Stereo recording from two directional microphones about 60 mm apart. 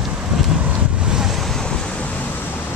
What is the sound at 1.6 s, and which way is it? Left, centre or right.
Waves, centre.